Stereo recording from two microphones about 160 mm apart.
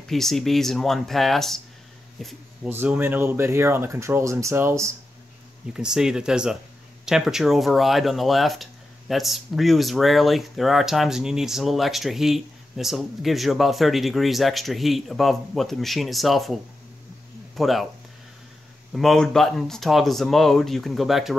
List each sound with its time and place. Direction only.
0.1 s speech: centre (ahead or behind)
2.7 s speech: 15° right (ahead or behind)
5.7 s speech: 5° right (ahead or behind)
17.6 s speech: centre (ahead or behind)
18.9 s speech: centre (ahead or behind)